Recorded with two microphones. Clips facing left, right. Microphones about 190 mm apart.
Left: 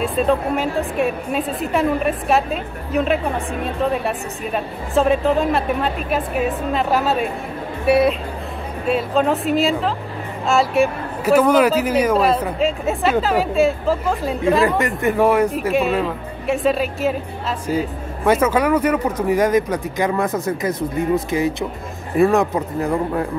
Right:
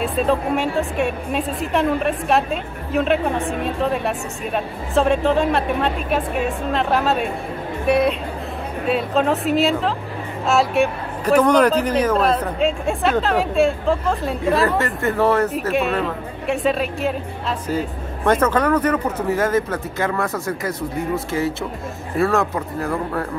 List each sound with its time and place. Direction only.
0.0 s a woman's voice: centre (ahead or behind)
14.8 s a woman's voice: 15° left (ahead or behind)
15.7 s a woman's voice: centre (ahead or behind); by 23.2 s 20° left (ahead or behind)